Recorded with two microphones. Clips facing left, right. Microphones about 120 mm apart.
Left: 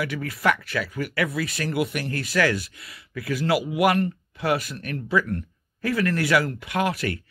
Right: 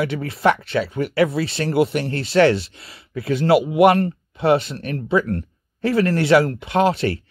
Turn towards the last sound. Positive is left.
turn(degrees=-30)  # may be behind; listen again after turning